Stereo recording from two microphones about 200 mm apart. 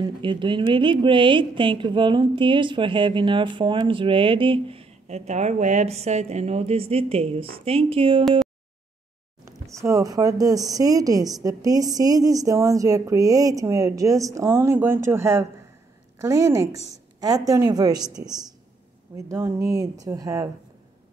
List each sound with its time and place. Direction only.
0.0 s a woman's voice: 25° right (ahead or behind)
9.4 s a woman's voice: 15° right (ahead or behind)